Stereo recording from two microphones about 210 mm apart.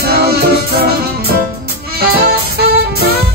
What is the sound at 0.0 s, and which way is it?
Music, 50° right (ahead or behind).